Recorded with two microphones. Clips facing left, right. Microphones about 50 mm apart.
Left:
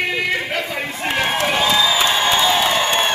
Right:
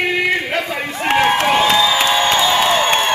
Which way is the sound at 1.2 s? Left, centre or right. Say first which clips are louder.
Right 4 dB; right.